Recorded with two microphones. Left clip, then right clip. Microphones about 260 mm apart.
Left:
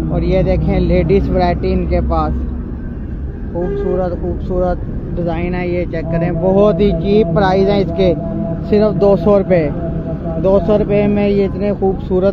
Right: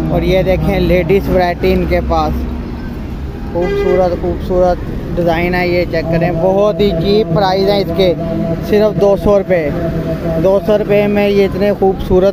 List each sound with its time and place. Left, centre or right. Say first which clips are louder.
0.1 s speech: right 3 dB; centre
5.2 s speech: right 7 dB; centre